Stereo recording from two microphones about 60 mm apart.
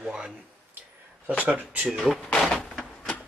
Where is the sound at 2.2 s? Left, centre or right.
Centre.